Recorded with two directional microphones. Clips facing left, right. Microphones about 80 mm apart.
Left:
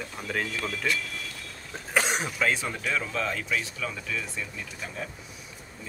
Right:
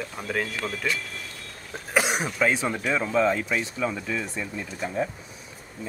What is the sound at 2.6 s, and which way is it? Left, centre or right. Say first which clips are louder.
Speech: right 5 dB; right.